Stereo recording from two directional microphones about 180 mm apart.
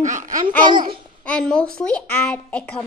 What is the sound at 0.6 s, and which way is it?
Speech, 25° right (ahead or behind).